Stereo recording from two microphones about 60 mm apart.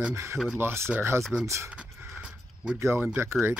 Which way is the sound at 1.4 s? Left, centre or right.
Right.